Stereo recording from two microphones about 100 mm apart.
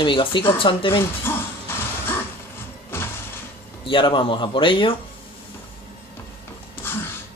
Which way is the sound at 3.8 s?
55° left (ahead or behind).